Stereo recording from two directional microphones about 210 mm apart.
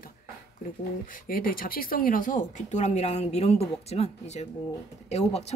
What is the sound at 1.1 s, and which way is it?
A woman's voice, 40° left (ahead or behind).